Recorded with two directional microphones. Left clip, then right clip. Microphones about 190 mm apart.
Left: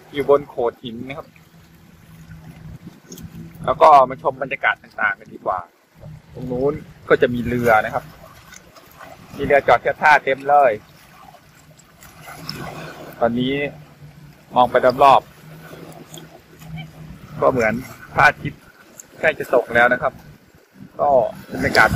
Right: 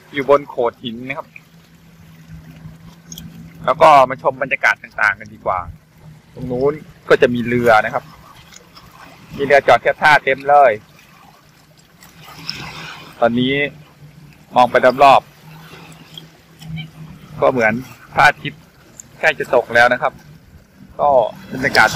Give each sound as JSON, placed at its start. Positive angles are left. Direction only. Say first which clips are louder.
{"t": 0.1, "sound": "a man's voice", "louder": "right 2 dB", "side_deg": -30}
{"t": 3.6, "sound": "a man's voice", "louder": "right 2 dB", "side_deg": -20}
{"t": 9.4, "sound": "speech", "louder": "right 3 dB", "side_deg": -50}
{"t": 12.4, "sound": "a sound", "louder": "right 4 dB", "side_deg": 55}
{"t": 13.2, "sound": "speech", "louder": "right 4 dB", "side_deg": -45}
{"t": 17.4, "sound": "a man's voice", "louder": "right 3 dB", "side_deg": -30}